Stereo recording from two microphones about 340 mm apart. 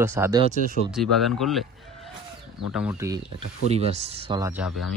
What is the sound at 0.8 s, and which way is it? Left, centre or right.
Speech, centre.